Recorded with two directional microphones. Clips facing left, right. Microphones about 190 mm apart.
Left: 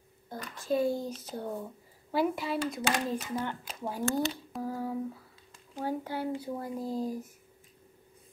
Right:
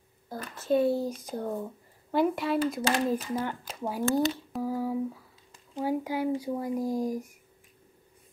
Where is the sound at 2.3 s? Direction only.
Centre (ahead or behind).